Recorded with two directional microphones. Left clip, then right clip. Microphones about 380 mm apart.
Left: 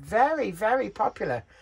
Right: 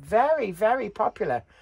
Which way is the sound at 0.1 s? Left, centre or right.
Right.